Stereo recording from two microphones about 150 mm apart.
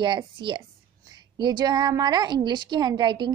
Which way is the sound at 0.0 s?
30° right (ahead or behind).